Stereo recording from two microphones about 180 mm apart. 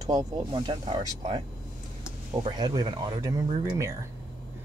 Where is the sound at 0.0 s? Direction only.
20° right (ahead or behind).